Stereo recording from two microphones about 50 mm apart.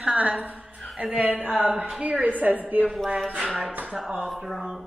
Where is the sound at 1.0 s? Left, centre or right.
Right.